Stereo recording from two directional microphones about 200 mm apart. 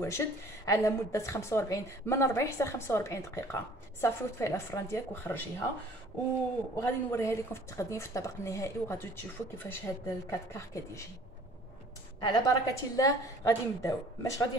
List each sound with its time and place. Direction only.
0.0 s a woman's voice: 15° left (ahead or behind)
6.8 s a woman's voice: 15° left (ahead or behind)
12.2 s a woman's voice: 20° left (ahead or behind)